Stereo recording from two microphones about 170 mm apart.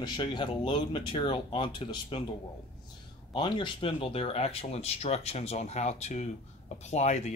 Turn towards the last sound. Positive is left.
turn(degrees=40)  # may be behind; listen again after turning